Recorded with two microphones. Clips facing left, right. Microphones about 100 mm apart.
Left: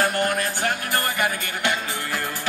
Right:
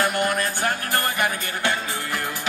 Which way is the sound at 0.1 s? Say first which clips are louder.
Even; 20° right (ahead or behind).